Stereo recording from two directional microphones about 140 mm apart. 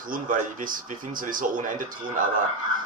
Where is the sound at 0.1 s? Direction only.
75° right (ahead or behind).